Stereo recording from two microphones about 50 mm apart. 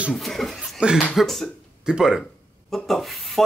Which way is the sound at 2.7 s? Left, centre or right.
Centre.